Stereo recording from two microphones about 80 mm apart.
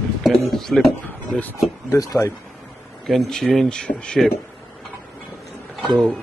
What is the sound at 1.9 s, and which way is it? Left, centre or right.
Speech, left.